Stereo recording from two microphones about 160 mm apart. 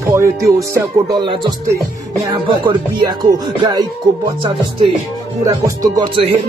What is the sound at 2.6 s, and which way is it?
Speech, 30° right (ahead or behind).